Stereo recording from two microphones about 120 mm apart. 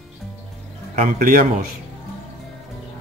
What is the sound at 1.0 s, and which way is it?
Speech, 90° right.